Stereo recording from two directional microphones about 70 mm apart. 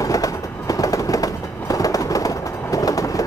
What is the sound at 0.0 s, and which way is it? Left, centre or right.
Train, left.